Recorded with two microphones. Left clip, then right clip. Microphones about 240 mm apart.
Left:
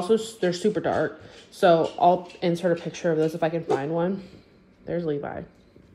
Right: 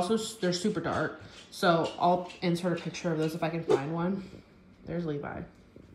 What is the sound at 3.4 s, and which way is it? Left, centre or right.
Speech, centre.